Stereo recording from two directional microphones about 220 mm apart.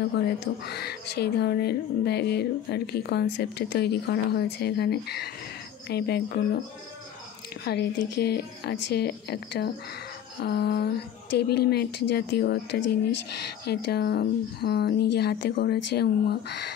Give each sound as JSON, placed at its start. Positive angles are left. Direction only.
{"t": 0.7, "sound": "speech", "side_deg": 45}
{"t": 7.6, "sound": "speech", "side_deg": 45}